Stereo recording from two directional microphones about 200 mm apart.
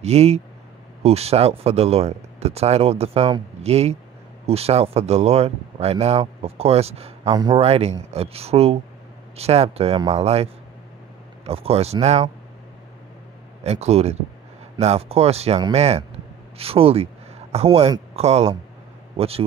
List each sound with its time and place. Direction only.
0.0 s speech: 30° right (ahead or behind)
13.7 s speech: 30° right (ahead or behind)